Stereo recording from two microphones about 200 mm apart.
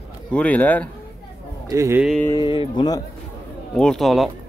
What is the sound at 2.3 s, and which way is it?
Speech, 25° left (ahead or behind).